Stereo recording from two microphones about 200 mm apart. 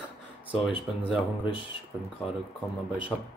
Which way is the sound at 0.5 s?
25° left (ahead or behind).